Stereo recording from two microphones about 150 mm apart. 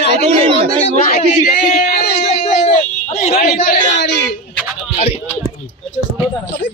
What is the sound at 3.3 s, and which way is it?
Speech, 90° left.